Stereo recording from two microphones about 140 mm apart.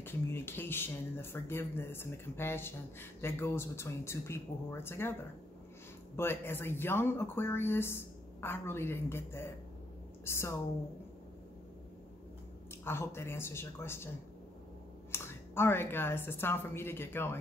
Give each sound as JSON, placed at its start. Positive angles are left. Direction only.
{"t": 0.0, "sound": "speech", "side_deg": 15}
{"t": 6.1, "sound": "speech", "side_deg": 15}
{"t": 12.8, "sound": "speech", "side_deg": 15}